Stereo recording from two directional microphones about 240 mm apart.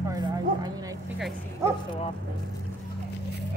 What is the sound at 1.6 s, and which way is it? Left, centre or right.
Speech, centre.